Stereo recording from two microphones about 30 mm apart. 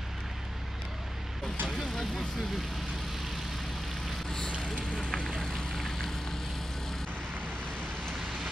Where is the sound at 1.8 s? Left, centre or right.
Centre.